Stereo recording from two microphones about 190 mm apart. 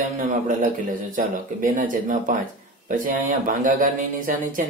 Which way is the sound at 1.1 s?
45° right (ahead or behind).